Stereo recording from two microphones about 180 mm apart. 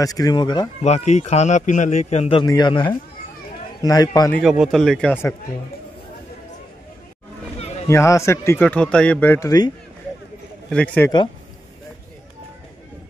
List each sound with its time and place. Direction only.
0.0 s speech: 20° left (ahead or behind)
0.8 s a man's voice: 40° left (ahead or behind); by 4.3 s 20° left (ahead or behind)
4.3 s a man's voice: centre (ahead or behind)
7.9 s speech: 15° left (ahead or behind)
10.7 s speech: 10° left (ahead or behind)